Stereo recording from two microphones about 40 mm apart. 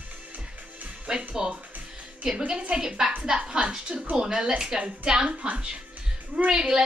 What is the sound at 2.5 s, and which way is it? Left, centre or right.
A woman's voice, right.